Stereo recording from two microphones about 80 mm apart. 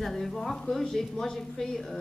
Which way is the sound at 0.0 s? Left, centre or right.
Centre.